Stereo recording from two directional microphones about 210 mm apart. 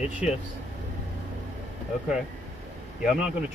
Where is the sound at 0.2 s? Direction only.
5° right (ahead or behind).